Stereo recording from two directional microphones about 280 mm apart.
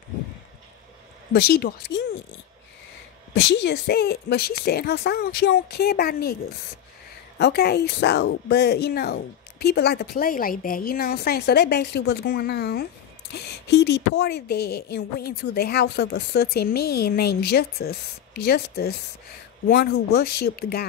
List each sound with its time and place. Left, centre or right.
1.3 s speech: left
3.3 s speech: left
7.3 s speech: left